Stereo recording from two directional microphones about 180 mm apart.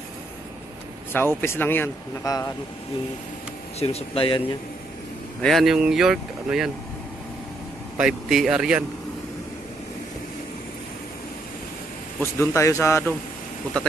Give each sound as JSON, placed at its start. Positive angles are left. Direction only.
{"t": 1.1, "sound": "speech", "side_deg": 10}
{"t": 3.8, "sound": "speech", "side_deg": 35}
{"t": 5.4, "sound": "speech", "side_deg": 0}
{"t": 8.0, "sound": "speech", "side_deg": 0}
{"t": 12.2, "sound": "speech", "side_deg": 15}